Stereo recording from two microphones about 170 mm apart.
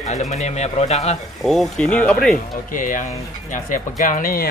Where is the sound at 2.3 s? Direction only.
50° left (ahead or behind).